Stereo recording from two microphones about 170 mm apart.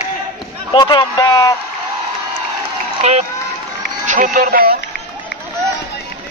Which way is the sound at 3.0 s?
40° right (ahead or behind).